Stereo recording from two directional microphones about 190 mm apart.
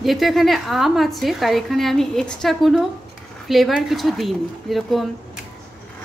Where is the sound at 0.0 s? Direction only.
Centre (ahead or behind).